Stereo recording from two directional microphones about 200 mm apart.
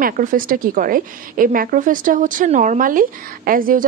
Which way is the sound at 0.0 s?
45° right (ahead or behind).